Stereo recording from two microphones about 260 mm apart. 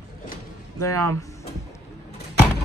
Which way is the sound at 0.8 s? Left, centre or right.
Centre.